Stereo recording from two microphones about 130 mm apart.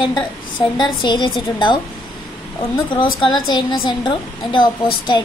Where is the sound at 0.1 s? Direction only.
35° left (ahead or behind).